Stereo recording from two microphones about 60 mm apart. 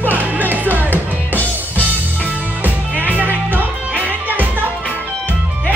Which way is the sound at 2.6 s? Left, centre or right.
Right.